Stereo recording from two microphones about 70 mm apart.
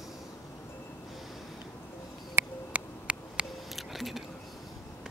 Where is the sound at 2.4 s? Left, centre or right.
Right.